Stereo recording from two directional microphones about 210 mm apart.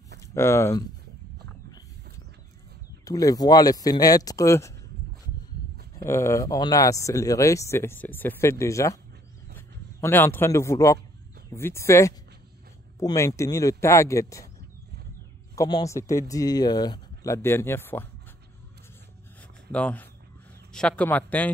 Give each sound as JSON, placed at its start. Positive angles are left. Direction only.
{"t": 0.3, "sound": "speech", "side_deg": 15}
{"t": 3.1, "sound": "speech", "side_deg": 15}
{"t": 5.9, "sound": "speech", "side_deg": 15}
{"t": 9.9, "sound": "speech", "side_deg": 10}
{"t": 15.5, "sound": "speech", "side_deg": 15}
{"t": 19.7, "sound": "speech", "side_deg": 5}